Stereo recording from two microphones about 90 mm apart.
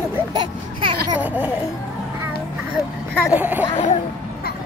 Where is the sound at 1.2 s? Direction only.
15° right (ahead or behind).